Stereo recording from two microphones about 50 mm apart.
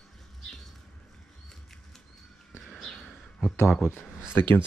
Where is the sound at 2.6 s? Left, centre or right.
Centre.